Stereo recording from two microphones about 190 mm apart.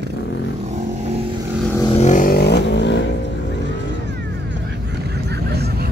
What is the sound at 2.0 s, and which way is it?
Vehicle, 40° left (ahead or behind).